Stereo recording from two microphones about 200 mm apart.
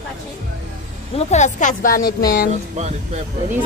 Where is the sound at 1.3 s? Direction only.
35° left (ahead or behind).